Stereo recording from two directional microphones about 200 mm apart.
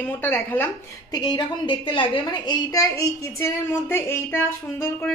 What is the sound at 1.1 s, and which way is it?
A woman's voice, 20° left (ahead or behind).